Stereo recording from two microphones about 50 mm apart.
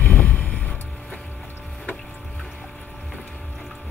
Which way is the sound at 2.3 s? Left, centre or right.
Centre.